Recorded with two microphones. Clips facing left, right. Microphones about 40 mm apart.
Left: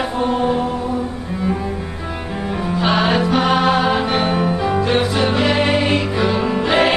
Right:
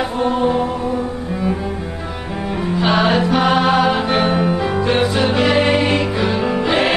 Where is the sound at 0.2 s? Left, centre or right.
Centre.